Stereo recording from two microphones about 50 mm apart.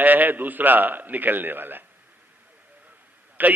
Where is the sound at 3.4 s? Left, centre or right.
Right.